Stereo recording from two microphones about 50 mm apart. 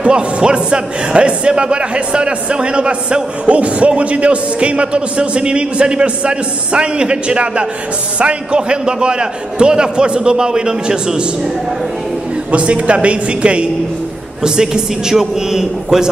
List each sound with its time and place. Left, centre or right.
0.0 s a man's voice: centre
12.4 s a man's voice: right